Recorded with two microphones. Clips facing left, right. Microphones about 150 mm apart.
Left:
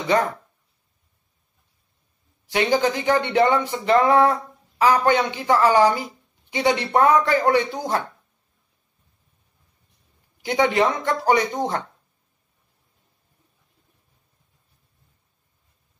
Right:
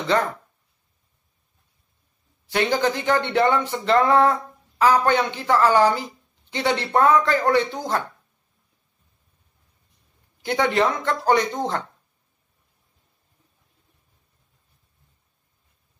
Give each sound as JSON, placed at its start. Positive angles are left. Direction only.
{"t": 0.0, "sound": "speech", "side_deg": 15}
{"t": 2.5, "sound": "speech", "side_deg": 15}
{"t": 10.4, "sound": "speech", "side_deg": 15}